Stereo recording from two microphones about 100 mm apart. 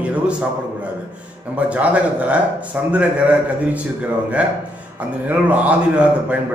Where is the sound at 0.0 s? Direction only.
10° right (ahead or behind).